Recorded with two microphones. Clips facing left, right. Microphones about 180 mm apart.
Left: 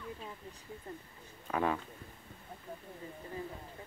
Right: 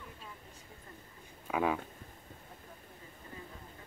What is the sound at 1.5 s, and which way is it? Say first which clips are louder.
Speech: right 1 dB; 5° right (ahead or behind).